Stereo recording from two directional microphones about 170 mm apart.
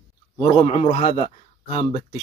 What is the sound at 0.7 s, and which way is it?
Speech, 40° left (ahead or behind).